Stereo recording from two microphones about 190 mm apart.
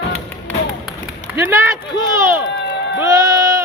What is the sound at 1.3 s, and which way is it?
Speech, 15° right (ahead or behind).